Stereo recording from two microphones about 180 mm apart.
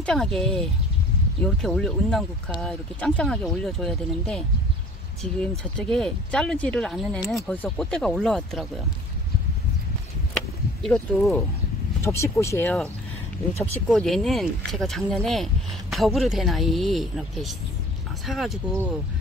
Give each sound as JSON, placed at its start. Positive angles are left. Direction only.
{"t": 0.0, "sound": "speech", "side_deg": 5}
{"t": 10.3, "sound": "a sound", "side_deg": 5}
{"t": 12.0, "sound": "speech", "side_deg": 15}